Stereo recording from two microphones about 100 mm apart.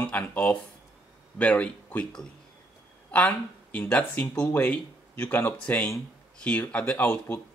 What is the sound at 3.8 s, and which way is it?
Speech, 15° left (ahead or behind).